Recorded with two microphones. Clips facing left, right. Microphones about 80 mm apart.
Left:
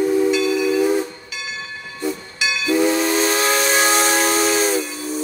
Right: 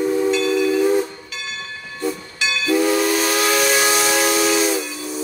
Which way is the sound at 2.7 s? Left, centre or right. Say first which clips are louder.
Even; left.